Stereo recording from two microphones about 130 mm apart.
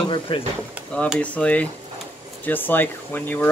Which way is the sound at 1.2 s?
10° left (ahead or behind).